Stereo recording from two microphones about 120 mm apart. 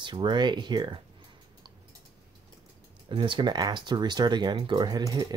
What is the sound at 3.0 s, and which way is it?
Speech, 45° right (ahead or behind).